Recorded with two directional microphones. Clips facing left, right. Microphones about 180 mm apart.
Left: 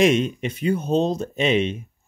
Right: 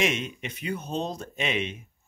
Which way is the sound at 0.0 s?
35° left (ahead or behind).